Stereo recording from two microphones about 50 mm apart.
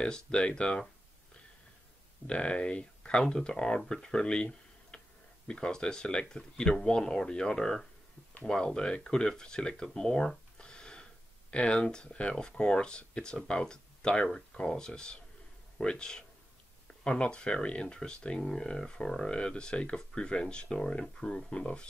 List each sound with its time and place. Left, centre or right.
0.0 s speech: centre
2.2 s speech: left